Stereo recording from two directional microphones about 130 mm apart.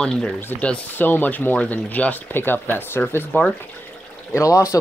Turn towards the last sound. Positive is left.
turn(degrees=25)  # may be behind; listen again after turning